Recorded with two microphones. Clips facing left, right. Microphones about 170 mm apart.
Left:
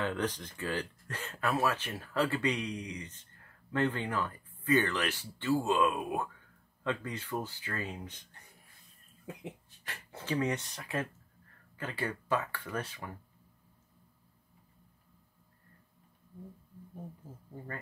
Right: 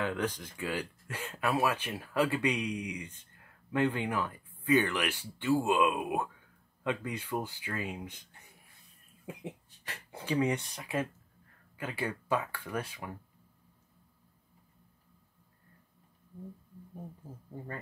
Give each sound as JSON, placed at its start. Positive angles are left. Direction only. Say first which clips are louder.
{"t": 0.0, "sound": "speech", "louder": "even", "side_deg": -10}